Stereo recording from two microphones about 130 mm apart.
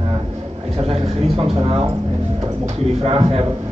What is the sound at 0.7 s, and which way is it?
Speech, 50° right (ahead or behind).